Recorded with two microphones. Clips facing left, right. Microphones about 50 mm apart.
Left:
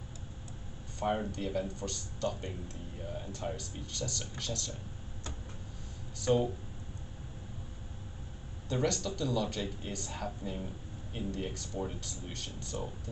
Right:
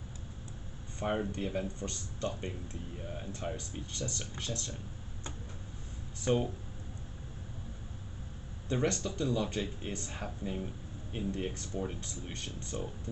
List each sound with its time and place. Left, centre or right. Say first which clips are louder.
1.3 s speech: left 1 dB; right
6.2 s speech: left 2 dB; right
8.6 s speech: even; right